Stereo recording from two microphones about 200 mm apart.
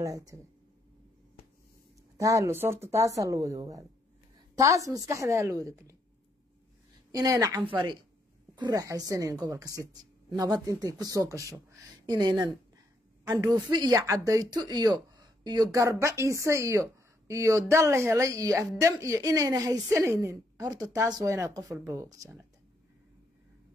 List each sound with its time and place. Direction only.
0.0 s speech: 15° right (ahead or behind)
2.1 s speech: 15° right (ahead or behind)
7.1 s a woman's voice: 15° right (ahead or behind)